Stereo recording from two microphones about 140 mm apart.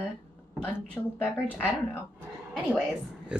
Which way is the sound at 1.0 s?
15° left (ahead or behind).